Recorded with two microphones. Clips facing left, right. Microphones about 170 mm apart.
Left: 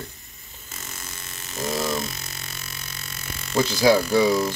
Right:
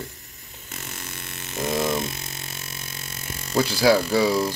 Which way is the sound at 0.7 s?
65° right (ahead or behind).